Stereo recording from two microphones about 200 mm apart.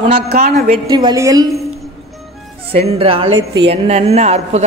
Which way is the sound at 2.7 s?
30° right (ahead or behind).